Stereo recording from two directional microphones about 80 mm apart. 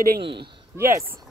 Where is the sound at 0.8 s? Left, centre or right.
Right.